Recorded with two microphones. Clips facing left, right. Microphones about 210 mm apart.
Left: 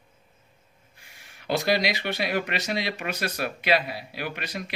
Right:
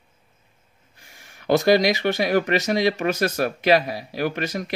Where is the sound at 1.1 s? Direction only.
45° right (ahead or behind).